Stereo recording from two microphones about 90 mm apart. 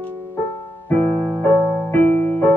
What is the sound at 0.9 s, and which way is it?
Music, 20° left (ahead or behind).